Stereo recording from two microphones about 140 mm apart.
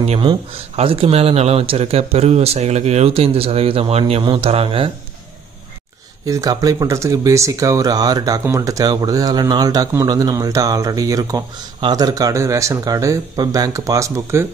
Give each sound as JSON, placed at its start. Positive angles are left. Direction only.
{"t": 0.0, "sound": "speech", "side_deg": -50}
{"t": 6.2, "sound": "speech", "side_deg": -25}